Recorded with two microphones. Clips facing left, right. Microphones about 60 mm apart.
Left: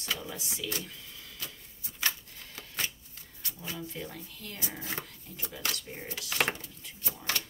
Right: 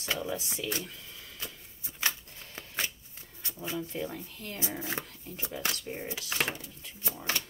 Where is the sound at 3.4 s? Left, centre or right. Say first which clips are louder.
Right 4 dB; right.